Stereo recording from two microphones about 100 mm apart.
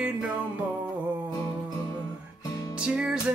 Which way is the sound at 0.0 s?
15° right (ahead or behind).